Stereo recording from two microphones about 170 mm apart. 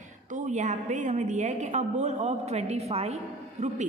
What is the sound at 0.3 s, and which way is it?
A woman's voice, 45° right (ahead or behind).